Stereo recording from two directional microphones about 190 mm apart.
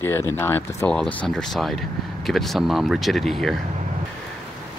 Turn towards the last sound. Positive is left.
turn(degrees=0)  # may be behind; listen again after turning